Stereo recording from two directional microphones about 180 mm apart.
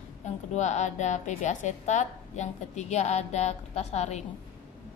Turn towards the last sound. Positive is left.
turn(degrees=40)  # may be behind; listen again after turning